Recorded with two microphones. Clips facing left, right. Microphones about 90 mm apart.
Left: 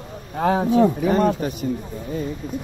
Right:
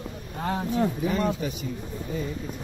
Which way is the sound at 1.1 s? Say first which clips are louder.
Left 7 dB; 60° left (ahead or behind).